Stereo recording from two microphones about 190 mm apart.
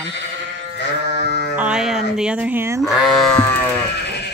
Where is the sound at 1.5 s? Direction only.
5° right (ahead or behind).